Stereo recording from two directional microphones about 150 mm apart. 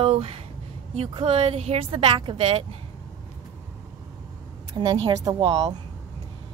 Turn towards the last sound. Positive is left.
turn(degrees=-25)  # may be behind; listen again after turning